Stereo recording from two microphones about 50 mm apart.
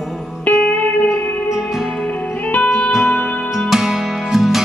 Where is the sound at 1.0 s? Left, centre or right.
Left.